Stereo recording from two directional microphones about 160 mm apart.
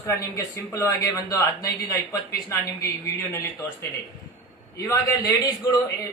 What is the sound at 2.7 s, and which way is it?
A man's voice, 20° left (ahead or behind).